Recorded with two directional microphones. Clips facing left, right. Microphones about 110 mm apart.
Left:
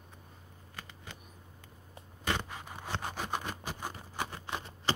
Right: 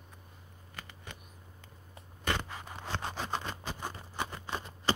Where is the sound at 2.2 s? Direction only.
15° left (ahead or behind).